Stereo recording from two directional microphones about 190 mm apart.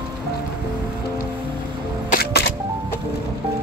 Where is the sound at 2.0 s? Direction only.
50° left (ahead or behind).